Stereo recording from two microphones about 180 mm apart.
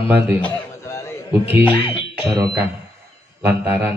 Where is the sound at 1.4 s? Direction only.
10° right (ahead or behind).